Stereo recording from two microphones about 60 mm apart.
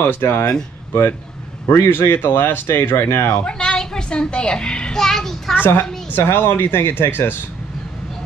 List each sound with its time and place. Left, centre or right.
0.0 s speech: left
1.7 s speech: left
3.4 s a sound: centre
5.6 s a woman's voice: left